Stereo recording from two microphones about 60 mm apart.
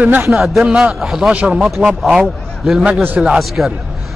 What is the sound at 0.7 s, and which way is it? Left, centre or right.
Speech, centre.